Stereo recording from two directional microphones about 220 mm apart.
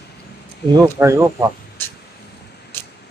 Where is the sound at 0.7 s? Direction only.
15° right (ahead or behind).